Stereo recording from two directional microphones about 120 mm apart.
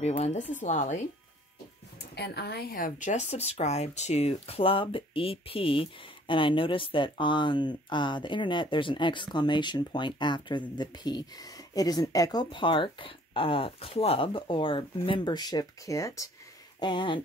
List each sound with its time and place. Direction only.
0.1 s a woman's voice: 65° left (ahead or behind); by 0.9 s 85° left
3.0 s speech: 80° left; by 16.3 s 25° left (ahead or behind)
16.8 s speech: 40° left (ahead or behind)